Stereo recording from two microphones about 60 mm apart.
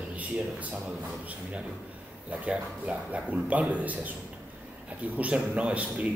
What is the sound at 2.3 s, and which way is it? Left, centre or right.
Speech, right.